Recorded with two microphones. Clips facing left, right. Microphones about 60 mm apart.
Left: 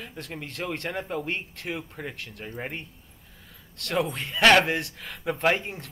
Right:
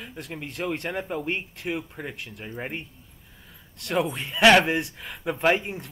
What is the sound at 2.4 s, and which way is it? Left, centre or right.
Speech, centre.